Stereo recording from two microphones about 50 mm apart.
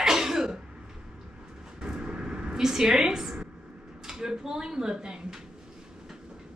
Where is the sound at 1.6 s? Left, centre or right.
Centre.